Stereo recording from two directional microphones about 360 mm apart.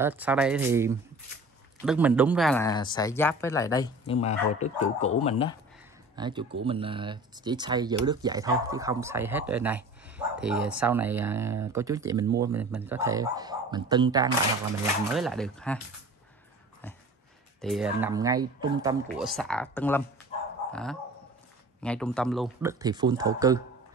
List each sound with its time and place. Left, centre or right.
0.0 s speech: centre
6.1 s speech: centre
15.1 s speech: centre
17.6 s speech: centre